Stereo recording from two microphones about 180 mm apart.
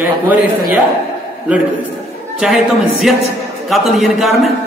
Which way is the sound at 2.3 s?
Centre (ahead or behind).